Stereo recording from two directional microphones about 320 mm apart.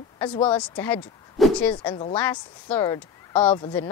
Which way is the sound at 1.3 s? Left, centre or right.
Centre.